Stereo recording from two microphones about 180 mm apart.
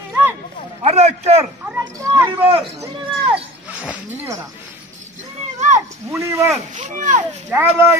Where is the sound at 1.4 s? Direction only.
15° right (ahead or behind).